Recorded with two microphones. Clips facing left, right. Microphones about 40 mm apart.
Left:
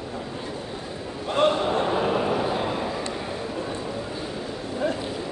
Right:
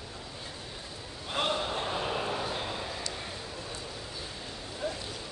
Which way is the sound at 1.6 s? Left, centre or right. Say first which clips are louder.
Left 10 dB; left.